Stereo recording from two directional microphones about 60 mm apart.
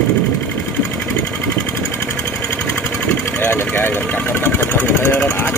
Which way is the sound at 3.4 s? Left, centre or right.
Left.